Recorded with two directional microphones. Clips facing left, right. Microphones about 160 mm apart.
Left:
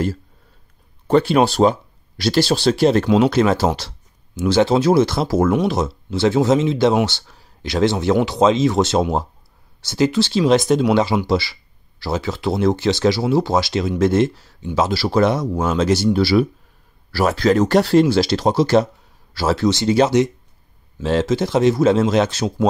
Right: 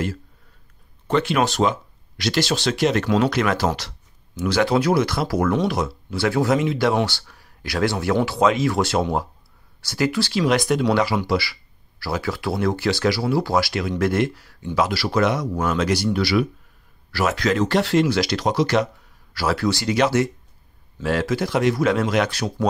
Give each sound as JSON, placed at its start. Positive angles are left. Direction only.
{"t": 1.0, "sound": "speech", "side_deg": 35}